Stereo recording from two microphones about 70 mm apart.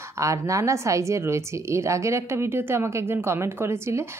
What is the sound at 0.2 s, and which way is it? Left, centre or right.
Speech, right.